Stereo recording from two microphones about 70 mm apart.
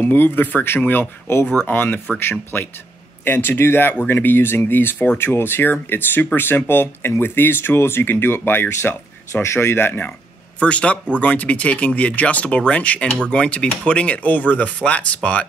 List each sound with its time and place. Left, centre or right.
0.0 s speech: left
10.6 s speech: centre